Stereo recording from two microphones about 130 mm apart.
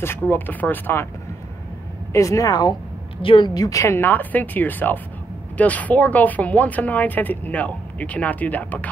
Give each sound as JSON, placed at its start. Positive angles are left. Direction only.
{"t": 0.0, "sound": "speech", "side_deg": 15}
{"t": 2.1, "sound": "speech", "side_deg": 25}
{"t": 3.2, "sound": "speech", "side_deg": 40}